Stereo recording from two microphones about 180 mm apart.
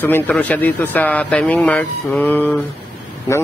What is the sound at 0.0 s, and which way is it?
Speech, 10° left (ahead or behind).